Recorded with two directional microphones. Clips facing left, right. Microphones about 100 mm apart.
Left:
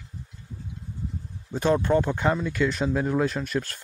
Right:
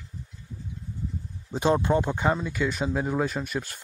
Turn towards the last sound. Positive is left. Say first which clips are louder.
# left 3 dB
turn(degrees=-10)  # may be behind; listen again after turning